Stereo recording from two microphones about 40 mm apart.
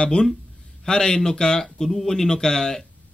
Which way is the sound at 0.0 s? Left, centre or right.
Left.